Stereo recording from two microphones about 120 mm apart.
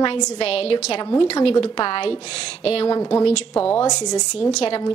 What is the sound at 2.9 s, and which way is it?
Speech, 25° left (ahead or behind).